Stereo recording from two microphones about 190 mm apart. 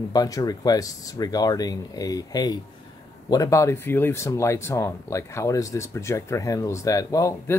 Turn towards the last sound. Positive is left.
turn(degrees=15)  # may be behind; listen again after turning